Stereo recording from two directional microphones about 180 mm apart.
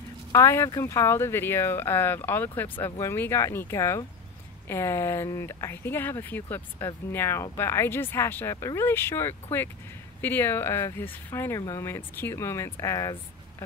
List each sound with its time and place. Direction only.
0.3 s speech: 15° left (ahead or behind)